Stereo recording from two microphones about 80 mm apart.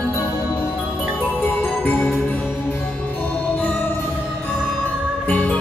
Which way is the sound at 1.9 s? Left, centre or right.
Centre.